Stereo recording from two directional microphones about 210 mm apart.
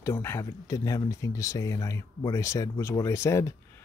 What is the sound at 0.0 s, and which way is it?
Speech, 10° left (ahead or behind).